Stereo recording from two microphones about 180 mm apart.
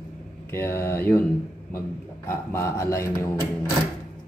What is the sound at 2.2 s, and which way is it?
Speech, 15° left (ahead or behind).